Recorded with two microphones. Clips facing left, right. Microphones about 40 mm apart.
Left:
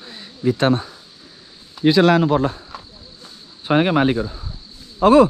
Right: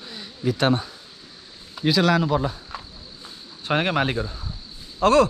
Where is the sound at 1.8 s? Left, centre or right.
Left.